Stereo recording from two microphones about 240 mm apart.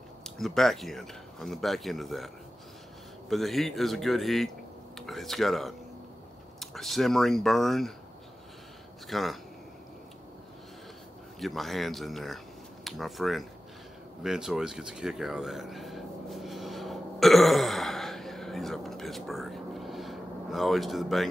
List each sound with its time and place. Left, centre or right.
0.4 s speech: centre
9.0 s speech: centre
11.3 s speech: centre
14.2 s a sound: centre